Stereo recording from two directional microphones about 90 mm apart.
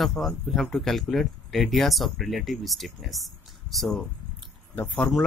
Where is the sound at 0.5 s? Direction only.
Centre (ahead or behind).